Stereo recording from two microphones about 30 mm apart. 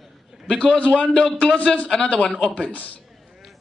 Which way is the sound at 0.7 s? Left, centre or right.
Left.